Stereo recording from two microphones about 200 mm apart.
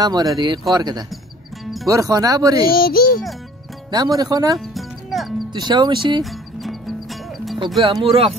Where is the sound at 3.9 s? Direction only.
20° right (ahead or behind).